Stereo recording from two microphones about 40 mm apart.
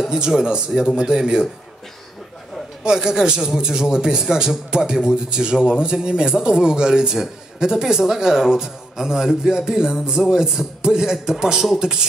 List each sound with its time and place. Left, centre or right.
0.0 s a sound: centre
0.4 s speech: right
2.8 s a man's voice: centre